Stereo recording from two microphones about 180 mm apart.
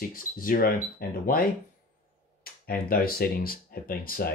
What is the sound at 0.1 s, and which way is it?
Speech, 50° left (ahead or behind).